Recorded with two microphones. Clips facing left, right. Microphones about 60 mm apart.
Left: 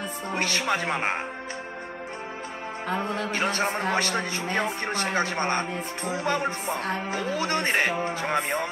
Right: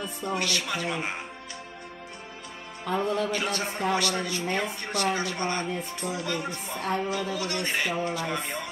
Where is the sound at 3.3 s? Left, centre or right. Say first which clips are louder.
Left 3 dB; left.